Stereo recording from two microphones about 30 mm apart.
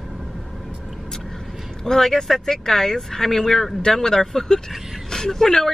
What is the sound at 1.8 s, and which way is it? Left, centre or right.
Speech, centre.